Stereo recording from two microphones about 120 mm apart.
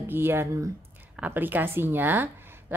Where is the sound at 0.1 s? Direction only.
20° right (ahead or behind).